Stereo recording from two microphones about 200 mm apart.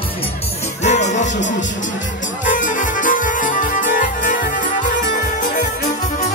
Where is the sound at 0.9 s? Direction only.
35° left (ahead or behind).